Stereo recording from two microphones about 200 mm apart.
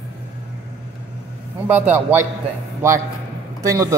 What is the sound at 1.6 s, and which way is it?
Speech, 10° right (ahead or behind).